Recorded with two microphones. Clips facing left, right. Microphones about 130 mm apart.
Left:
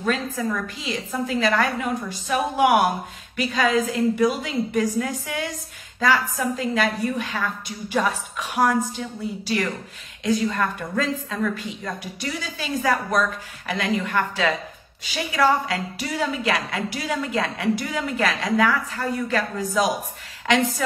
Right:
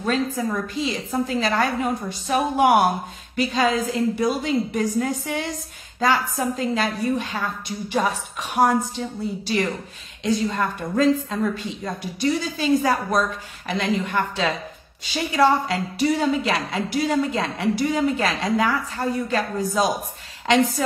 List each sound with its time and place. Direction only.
0.0 s a woman's voice: 30° right (ahead or behind)
10.5 s a woman's voice: 30° right (ahead or behind)